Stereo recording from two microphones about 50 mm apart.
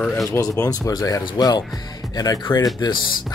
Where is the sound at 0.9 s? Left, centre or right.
Left.